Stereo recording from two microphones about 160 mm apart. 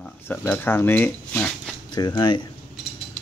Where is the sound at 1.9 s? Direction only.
25° left (ahead or behind).